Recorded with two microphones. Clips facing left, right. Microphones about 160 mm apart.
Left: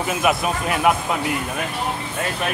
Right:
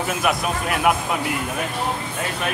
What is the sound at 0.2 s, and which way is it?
Speech, centre (ahead or behind).